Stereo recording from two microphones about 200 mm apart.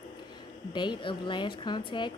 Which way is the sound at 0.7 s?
25° left (ahead or behind).